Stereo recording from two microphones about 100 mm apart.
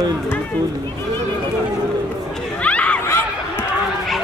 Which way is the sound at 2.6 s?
15° left (ahead or behind).